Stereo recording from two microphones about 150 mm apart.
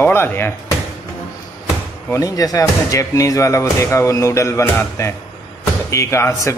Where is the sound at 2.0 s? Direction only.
20° left (ahead or behind).